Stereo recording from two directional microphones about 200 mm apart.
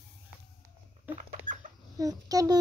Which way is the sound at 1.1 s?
10° right (ahead or behind).